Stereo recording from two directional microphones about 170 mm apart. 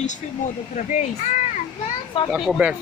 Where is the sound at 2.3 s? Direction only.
5° right (ahead or behind).